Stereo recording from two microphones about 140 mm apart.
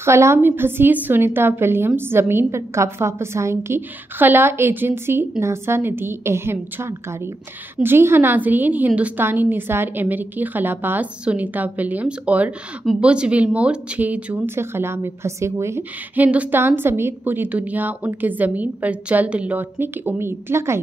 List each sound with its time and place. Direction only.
0.0 s speech: 20° right (ahead or behind)